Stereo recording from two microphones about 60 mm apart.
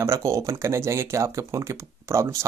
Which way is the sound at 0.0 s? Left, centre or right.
Right.